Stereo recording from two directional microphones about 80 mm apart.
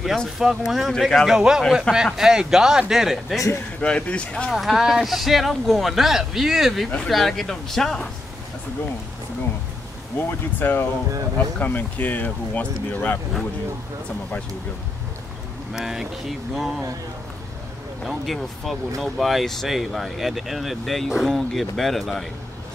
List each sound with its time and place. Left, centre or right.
0.4 s speech: centre
3.8 s speech: centre
4.6 s speech: centre
10.1 s speech: left
15.7 s speech: centre
18.0 s speech: centre